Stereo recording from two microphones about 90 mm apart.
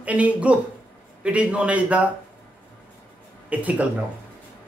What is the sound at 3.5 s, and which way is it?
Speech, 15° right (ahead or behind).